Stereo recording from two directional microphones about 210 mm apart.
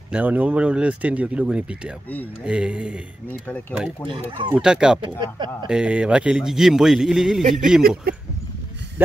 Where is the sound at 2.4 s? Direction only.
5° right (ahead or behind).